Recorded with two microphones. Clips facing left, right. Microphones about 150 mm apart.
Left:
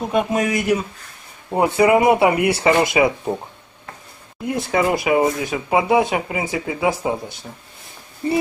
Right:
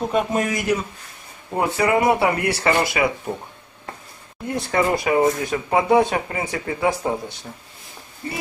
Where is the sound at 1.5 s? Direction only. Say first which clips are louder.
Left 5 dB; 20° left (ahead or behind).